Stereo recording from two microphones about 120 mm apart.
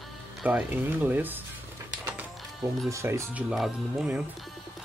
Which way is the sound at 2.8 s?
25° right (ahead or behind).